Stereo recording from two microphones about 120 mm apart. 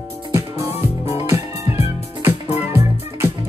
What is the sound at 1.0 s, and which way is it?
Music, 60° left (ahead or behind).